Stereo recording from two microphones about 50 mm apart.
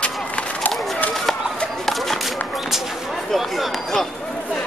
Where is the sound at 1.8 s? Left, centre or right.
Centre.